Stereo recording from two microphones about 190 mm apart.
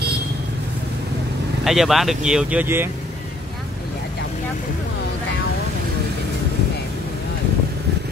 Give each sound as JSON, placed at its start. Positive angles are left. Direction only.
{"t": 1.6, "sound": "speech", "side_deg": 0}